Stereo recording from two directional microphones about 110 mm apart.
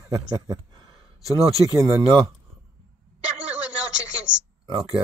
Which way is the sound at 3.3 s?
10° right (ahead or behind).